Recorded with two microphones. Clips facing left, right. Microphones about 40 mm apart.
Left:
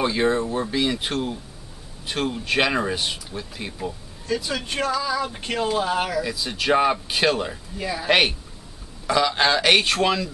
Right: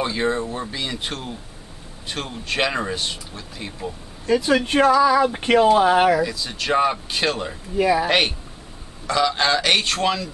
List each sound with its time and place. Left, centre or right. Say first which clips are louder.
0.0 s speech: left 1 dB; centre
4.3 s speech: right 8 dB; right
6.2 s speech: left 1 dB; centre
7.7 s speech: right 13 dB; right
8.1 s speech: left 1 dB; centre